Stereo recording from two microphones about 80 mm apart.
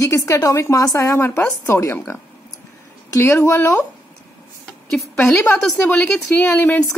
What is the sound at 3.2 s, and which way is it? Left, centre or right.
Speech, left.